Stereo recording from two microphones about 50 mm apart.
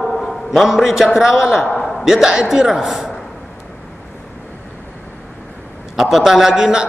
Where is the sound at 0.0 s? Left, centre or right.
Centre.